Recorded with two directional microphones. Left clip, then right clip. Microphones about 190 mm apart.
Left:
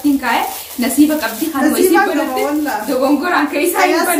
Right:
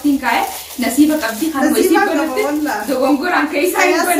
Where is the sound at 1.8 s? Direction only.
Centre (ahead or behind).